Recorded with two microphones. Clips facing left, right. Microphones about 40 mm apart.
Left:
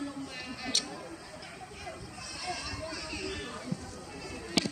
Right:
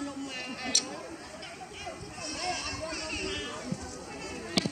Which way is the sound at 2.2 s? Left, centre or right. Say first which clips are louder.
Right 4 dB; right.